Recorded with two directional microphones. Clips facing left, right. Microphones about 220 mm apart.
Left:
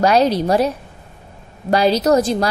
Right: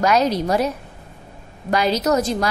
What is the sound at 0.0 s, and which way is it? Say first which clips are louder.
Speech: left 3 dB; 30° left (ahead or behind).